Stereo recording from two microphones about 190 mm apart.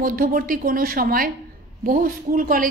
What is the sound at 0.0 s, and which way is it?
A woman's voice, 50° right (ahead or behind).